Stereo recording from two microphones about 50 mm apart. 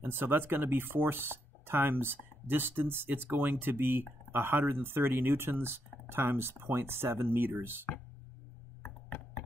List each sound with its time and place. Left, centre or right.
0.0 s speech: right